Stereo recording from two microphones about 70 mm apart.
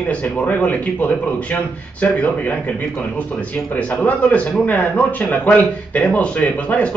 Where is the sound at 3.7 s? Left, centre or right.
Left.